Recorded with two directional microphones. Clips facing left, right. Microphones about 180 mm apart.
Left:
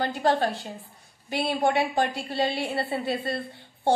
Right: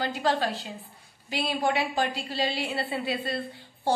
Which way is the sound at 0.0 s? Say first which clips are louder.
Left 3 dB; 55° left (ahead or behind).